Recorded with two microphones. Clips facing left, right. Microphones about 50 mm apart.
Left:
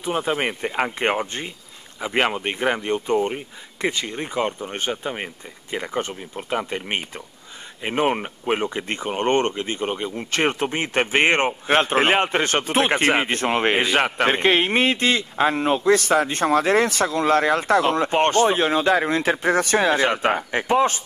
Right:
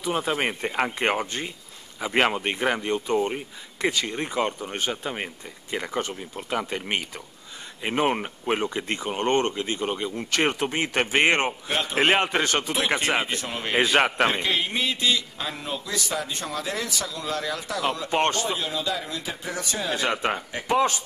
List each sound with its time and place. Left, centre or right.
0.1 s speech: centre
5.9 s speech: left
7.8 s speech: centre
8.8 s speech: left
11.6 s speech: left
12.0 s speech: centre
12.4 s speech: left
13.7 s a man's voice: centre
14.3 s a man's voice: left
18.6 s a man's voice: left
20.0 s speech: left